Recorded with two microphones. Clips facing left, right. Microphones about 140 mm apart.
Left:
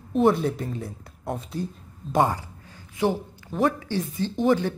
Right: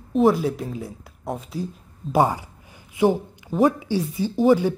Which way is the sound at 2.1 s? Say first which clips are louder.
Right 2 dB; 10° right (ahead or behind).